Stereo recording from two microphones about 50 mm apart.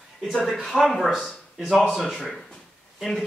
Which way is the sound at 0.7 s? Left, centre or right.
Centre.